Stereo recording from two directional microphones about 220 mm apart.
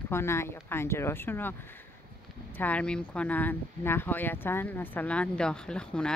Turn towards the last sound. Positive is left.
turn(degrees=5)  # may be behind; listen again after turning